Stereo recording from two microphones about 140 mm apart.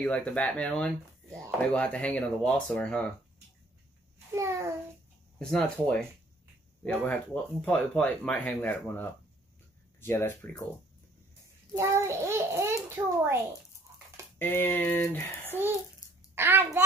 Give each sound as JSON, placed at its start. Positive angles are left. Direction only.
{"t": 0.0, "sound": "speech", "side_deg": 5}
{"t": 4.4, "sound": "a sound", "side_deg": -20}
{"t": 5.4, "sound": "speech", "side_deg": 10}
{"t": 11.7, "sound": "a child's voice", "side_deg": -20}
{"t": 14.4, "sound": "speech", "side_deg": 15}
{"t": 16.3, "sound": "a child's voice", "side_deg": -15}